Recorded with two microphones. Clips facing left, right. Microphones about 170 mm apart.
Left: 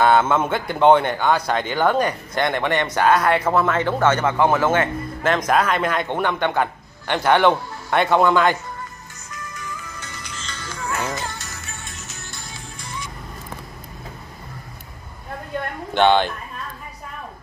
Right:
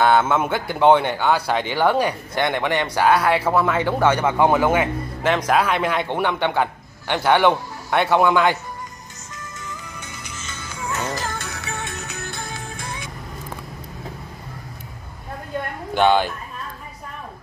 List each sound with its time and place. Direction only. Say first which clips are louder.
0.0 s a man's voice: left 1 dB; 5° right (ahead or behind)
9.9 s music: even; 10° right (ahead or behind)
11.1 s music: right 3 dB; 50° right (ahead or behind)
15.9 s speech: left 1 dB; 5° right (ahead or behind)